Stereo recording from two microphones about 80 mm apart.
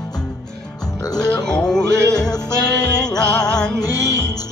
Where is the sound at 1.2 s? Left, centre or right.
Centre.